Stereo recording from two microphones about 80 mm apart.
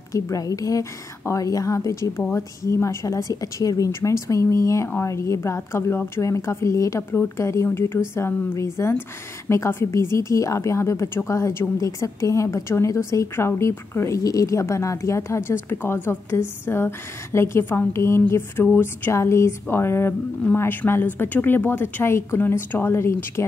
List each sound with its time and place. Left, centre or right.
0.1 s a woman's voice: left